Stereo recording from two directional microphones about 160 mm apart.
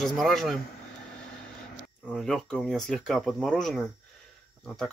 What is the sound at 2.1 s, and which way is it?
Speech, centre (ahead or behind).